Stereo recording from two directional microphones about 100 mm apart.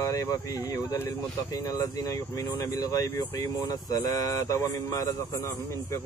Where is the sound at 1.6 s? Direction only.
35° left (ahead or behind).